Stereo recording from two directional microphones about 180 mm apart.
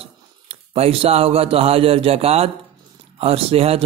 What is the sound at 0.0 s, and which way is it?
A man's voice, 35° right (ahead or behind).